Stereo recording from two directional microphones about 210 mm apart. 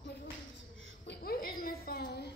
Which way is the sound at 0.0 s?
50° left (ahead or behind).